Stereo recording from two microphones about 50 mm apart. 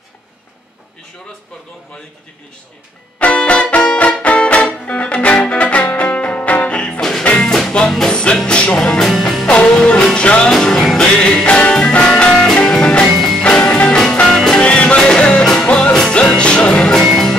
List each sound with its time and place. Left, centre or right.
3.2 s music: left
8.7 s music: centre
9.5 s music: left
10.6 s music: centre
14.6 s music: left
17.1 s music: centre